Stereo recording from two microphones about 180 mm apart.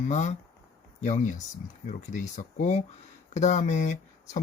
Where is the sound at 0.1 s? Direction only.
40° left (ahead or behind).